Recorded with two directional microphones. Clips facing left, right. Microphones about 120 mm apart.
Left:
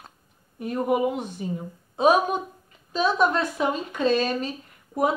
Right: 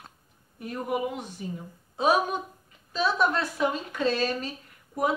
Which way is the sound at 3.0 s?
20° left (ahead or behind).